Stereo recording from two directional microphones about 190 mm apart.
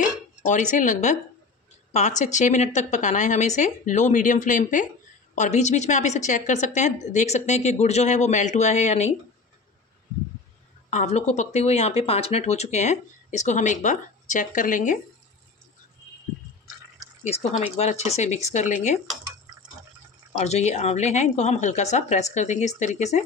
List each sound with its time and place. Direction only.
0.5 s speech: 40° left (ahead or behind)
10.9 s speech: 35° left (ahead or behind)
17.2 s speech: 35° left (ahead or behind)
20.3 s speech: 35° left (ahead or behind)